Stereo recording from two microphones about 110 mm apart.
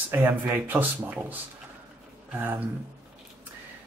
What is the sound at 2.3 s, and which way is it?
Speech, 15° right (ahead or behind).